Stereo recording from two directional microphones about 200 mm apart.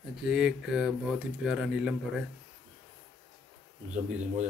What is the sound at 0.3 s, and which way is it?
Speech, 5° right (ahead or behind).